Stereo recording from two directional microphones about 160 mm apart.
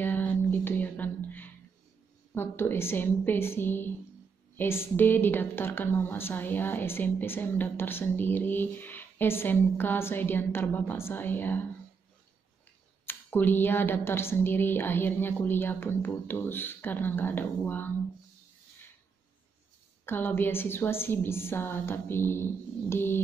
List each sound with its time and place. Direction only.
0.0 s music: 10° left (ahead or behind)
2.3 s a woman's voice: 15° left (ahead or behind)
13.0 s a woman's voice: 15° left (ahead or behind)
20.1 s a woman's voice: 15° left (ahead or behind)